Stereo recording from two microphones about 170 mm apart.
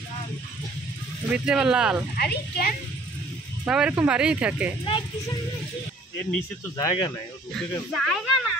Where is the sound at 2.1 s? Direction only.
65° left (ahead or behind).